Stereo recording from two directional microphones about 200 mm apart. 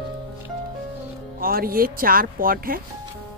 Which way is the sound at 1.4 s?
45° right (ahead or behind).